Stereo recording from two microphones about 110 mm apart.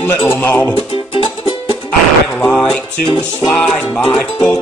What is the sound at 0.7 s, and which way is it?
Music, 55° left (ahead or behind).